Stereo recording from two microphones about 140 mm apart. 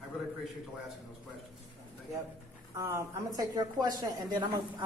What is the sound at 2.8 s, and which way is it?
A woman's voice, 20° right (ahead or behind).